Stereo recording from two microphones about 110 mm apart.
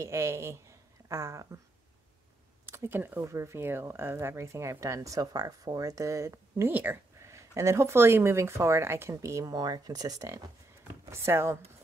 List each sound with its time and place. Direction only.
0.0 s speech: 25° right (ahead or behind)
2.6 s speech: 20° right (ahead or behind)
10.8 s speech: 25° right (ahead or behind)